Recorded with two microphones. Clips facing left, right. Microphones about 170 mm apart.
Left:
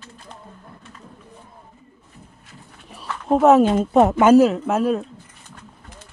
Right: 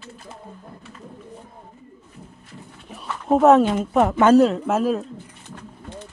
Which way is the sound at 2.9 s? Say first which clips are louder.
Even; centre (ahead or behind).